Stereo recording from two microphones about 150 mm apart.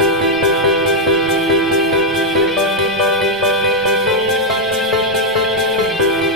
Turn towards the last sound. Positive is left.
turn(degrees=0)  # may be behind; listen again after turning